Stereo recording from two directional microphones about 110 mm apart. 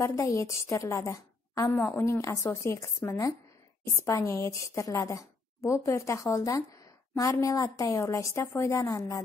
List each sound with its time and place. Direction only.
0.0 s a woman's voice: 30° left (ahead or behind)